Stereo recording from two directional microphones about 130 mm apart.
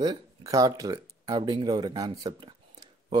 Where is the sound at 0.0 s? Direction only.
30° right (ahead or behind).